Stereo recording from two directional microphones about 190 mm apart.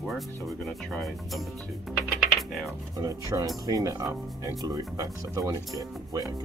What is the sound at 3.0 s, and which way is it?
Speech, 20° right (ahead or behind).